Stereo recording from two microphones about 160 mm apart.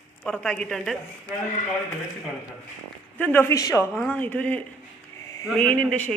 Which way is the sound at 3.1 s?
15° left (ahead or behind).